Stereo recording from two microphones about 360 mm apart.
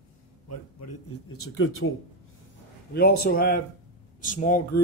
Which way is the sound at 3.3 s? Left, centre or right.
Left.